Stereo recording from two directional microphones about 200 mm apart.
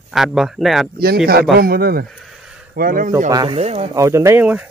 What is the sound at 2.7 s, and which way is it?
Speech, 45° right (ahead or behind).